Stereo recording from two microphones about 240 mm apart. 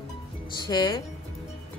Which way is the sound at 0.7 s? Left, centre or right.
Centre.